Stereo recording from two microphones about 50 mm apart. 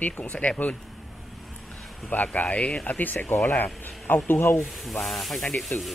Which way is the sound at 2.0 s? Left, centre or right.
Left.